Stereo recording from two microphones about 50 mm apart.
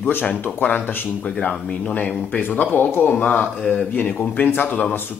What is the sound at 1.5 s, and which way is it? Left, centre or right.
Speech, left.